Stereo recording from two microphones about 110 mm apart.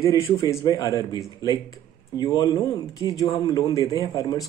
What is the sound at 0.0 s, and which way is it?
Speech, 25° left (ahead or behind).